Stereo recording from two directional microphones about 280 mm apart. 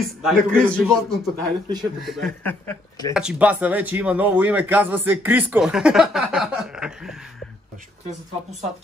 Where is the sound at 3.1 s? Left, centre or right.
Centre.